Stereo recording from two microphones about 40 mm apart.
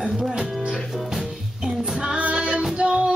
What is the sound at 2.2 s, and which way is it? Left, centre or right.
Music, right.